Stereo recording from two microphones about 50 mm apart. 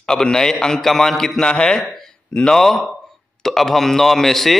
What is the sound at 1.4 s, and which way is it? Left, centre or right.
Speech, centre.